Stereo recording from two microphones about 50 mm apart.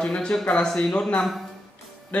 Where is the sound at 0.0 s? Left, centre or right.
Centre.